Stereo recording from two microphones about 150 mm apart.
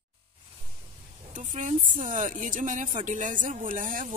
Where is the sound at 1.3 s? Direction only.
55° right (ahead or behind).